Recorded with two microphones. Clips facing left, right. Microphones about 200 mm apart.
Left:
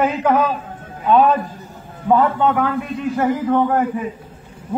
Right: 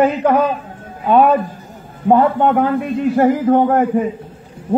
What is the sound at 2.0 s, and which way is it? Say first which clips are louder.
A man's voice: right 3 dB; 50° right (ahead or behind).